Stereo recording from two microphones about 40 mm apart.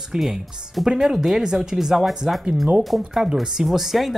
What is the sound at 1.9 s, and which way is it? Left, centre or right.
Speech, centre.